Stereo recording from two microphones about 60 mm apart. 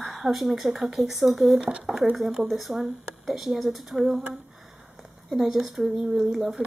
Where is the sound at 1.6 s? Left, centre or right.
Right.